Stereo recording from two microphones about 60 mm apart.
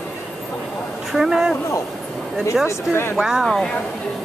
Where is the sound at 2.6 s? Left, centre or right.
Left.